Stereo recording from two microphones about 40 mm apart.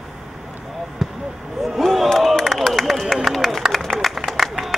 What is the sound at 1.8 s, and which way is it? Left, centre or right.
Crowd, centre.